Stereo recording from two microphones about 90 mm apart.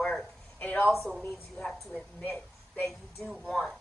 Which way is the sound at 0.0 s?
15° left (ahead or behind).